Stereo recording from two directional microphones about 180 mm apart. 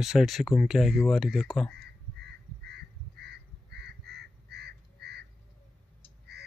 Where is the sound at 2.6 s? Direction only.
65° right (ahead or behind).